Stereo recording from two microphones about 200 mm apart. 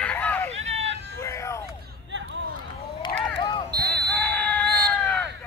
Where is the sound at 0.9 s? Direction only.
60° right (ahead or behind).